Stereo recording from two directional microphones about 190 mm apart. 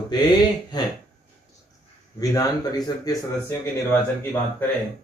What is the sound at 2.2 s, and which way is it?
A man's voice, 20° left (ahead or behind).